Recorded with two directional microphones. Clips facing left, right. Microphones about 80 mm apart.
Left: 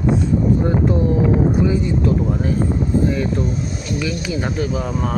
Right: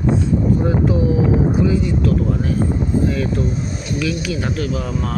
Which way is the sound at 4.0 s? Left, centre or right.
Centre.